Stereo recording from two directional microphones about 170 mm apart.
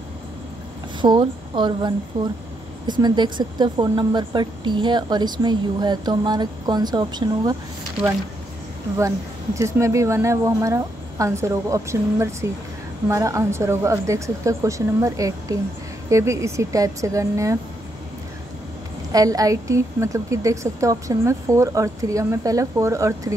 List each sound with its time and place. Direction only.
1.0 s speech: 25° right (ahead or behind)
9.6 s speech: 15° right (ahead or behind)
19.1 s speech: 20° right (ahead or behind)